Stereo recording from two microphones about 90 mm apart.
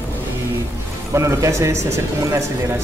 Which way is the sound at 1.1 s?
35° right (ahead or behind).